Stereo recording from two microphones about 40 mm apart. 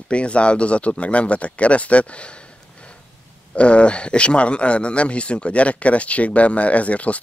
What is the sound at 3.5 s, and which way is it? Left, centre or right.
Speech, left.